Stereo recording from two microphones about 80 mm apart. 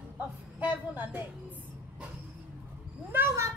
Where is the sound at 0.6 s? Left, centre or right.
Right.